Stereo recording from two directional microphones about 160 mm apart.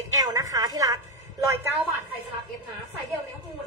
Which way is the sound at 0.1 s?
20° right (ahead or behind).